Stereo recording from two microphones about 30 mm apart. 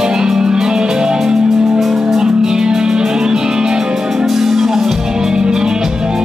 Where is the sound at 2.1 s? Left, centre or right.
Right.